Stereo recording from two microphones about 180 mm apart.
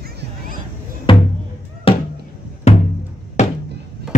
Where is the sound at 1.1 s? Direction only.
30° left (ahead or behind).